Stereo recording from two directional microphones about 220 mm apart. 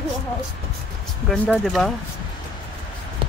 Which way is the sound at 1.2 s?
Centre (ahead or behind).